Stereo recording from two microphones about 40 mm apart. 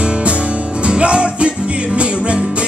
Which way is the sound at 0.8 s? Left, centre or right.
Right.